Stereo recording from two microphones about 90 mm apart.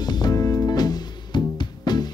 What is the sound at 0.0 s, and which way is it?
Music, 50° left (ahead or behind).